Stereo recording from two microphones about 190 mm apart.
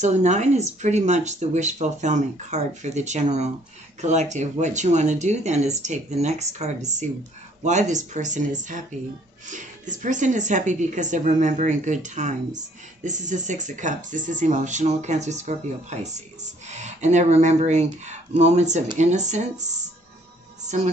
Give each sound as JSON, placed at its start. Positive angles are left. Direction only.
{"t": 0.0, "sound": "speech", "side_deg": -35}